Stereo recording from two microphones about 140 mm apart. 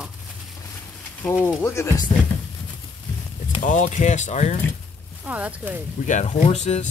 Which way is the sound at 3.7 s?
60° left (ahead or behind).